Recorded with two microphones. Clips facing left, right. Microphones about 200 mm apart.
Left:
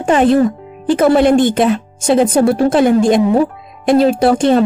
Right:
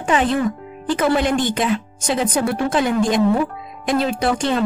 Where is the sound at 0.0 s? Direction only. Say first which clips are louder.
Left 7 dB; 50° left (ahead or behind).